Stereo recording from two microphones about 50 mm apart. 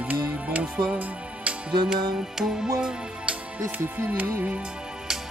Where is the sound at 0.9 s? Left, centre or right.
Right.